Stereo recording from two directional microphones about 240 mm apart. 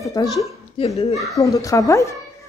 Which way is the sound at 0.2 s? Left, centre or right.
Centre.